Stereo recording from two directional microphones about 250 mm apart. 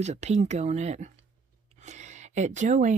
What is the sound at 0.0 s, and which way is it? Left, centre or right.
Speech, right.